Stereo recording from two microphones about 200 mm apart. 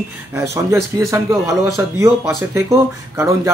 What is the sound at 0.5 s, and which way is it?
A man's voice, 15° right (ahead or behind).